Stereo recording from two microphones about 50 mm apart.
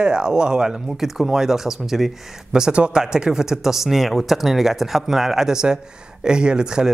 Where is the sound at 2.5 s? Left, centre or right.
Centre.